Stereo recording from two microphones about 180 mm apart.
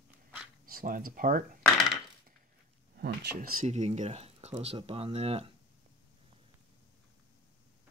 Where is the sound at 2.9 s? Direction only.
65° right (ahead or behind).